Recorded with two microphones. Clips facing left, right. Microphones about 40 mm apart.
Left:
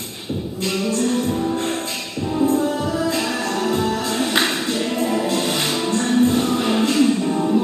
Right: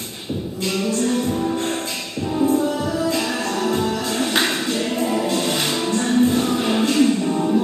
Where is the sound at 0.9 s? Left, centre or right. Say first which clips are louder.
Left 1 dB; left.